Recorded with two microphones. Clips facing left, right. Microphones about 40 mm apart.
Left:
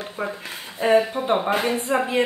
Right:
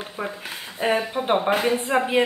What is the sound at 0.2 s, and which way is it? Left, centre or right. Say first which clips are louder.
A woman's voice: left 1 dB; centre.